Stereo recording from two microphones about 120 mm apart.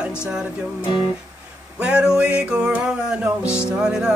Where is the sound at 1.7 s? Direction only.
10° right (ahead or behind).